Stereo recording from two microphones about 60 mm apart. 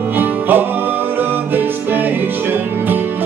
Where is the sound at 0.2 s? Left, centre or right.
Right.